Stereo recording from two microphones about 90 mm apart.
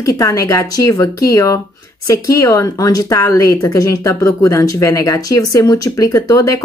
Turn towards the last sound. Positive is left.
turn(degrees=35)  # may be behind; listen again after turning